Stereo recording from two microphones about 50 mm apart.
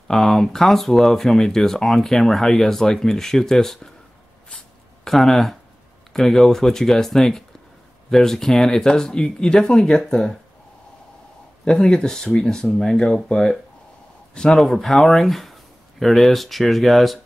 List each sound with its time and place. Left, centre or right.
0.1 s speech: centre
5.0 s speech: centre
11.6 s speech: centre